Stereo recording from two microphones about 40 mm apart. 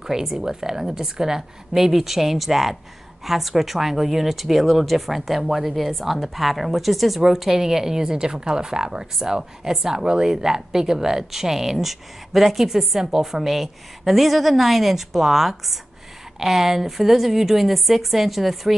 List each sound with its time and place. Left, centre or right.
0.0 s speech: centre